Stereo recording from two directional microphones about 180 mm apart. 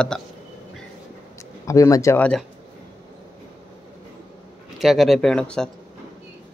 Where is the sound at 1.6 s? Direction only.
20° left (ahead or behind).